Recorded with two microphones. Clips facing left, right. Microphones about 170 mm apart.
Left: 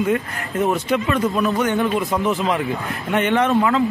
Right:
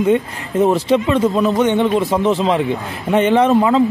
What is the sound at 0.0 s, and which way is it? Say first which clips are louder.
A man's voice: right 5 dB; 30° right (ahead or behind).